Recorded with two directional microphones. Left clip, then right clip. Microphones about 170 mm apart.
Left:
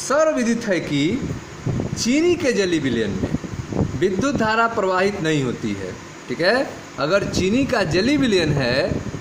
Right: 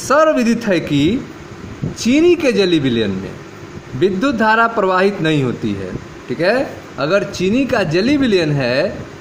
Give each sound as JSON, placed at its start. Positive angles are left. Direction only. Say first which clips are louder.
{"t": 0.1, "sound": "a man's voice", "louder": "right 6 dB", "side_deg": -35}